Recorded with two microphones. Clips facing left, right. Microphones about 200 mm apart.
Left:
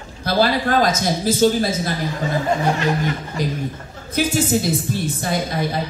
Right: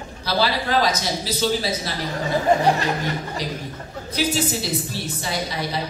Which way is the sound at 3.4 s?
50° left (ahead or behind).